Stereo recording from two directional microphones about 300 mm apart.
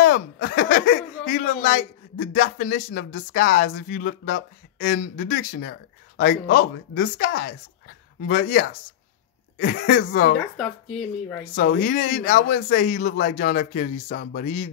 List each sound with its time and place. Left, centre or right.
0.0 s snicker: left
0.7 s a man's voice: left
10.6 s speech: centre
11.6 s a man's voice: left
14.4 s a man's voice: left